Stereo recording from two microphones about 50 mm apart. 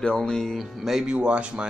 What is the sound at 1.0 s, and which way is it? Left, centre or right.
Speech, right.